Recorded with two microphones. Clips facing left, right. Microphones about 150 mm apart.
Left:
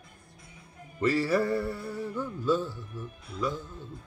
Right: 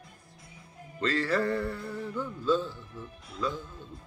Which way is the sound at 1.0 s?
10° left (ahead or behind).